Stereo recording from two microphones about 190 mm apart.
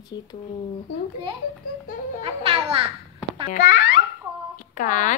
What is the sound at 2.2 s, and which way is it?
Speech, 30° right (ahead or behind).